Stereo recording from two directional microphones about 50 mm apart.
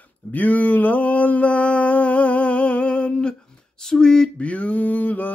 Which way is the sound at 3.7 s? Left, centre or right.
Centre.